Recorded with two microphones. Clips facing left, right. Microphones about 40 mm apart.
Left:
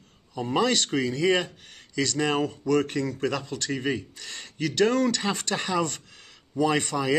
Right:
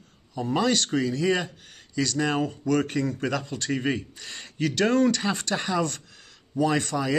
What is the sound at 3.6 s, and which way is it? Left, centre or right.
Speech, right.